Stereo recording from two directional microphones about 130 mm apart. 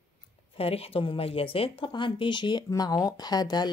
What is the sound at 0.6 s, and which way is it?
Speech, 50° left (ahead or behind).